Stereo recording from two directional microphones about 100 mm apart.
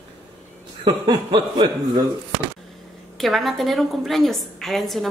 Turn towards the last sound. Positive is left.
turn(degrees=0)  # may be behind; listen again after turning